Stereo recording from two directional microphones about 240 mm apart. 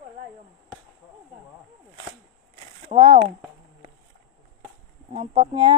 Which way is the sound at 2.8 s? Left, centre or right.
Right.